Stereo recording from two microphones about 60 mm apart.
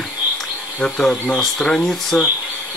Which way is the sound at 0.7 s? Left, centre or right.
Centre.